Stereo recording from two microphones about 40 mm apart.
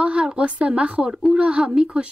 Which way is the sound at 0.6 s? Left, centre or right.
Right.